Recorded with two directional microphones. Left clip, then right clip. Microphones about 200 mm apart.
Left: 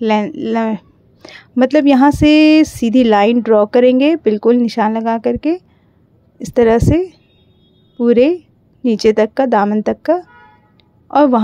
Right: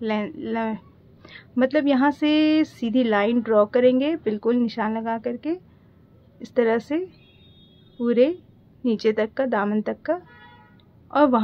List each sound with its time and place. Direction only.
0.0 s a woman's voice: 40° left (ahead or behind)